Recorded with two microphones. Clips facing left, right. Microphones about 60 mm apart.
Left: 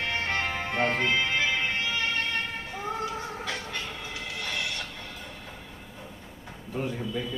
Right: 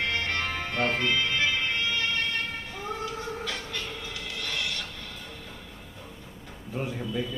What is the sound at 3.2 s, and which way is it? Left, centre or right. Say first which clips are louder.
Music: even; left.